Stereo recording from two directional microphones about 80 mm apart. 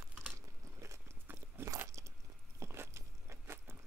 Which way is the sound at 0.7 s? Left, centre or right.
Right.